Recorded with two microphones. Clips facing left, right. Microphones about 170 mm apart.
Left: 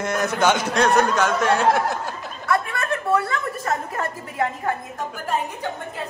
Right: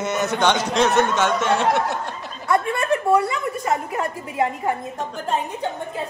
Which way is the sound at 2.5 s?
20° right (ahead or behind).